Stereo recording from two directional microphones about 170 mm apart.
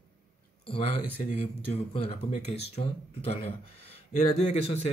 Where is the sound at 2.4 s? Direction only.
35° left (ahead or behind).